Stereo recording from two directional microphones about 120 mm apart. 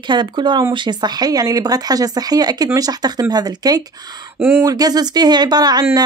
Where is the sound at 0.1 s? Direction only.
40° right (ahead or behind).